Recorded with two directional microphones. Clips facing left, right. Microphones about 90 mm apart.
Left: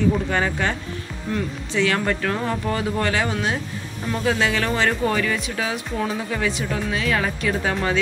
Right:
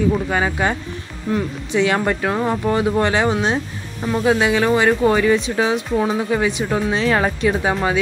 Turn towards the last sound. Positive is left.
turn(degrees=-20)  # may be behind; listen again after turning